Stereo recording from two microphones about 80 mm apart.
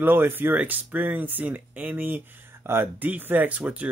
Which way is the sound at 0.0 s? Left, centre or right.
Right.